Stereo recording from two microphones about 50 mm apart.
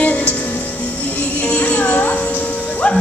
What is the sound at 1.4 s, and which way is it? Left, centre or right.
Music, left.